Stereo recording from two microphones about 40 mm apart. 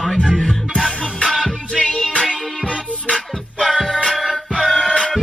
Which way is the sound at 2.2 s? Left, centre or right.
Left.